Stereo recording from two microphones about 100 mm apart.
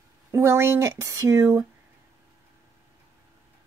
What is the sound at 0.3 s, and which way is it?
A woman's voice, 30° right (ahead or behind).